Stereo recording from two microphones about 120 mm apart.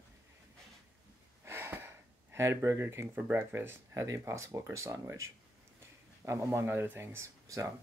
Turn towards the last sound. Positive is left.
turn(degrees=-25)  # may be behind; listen again after turning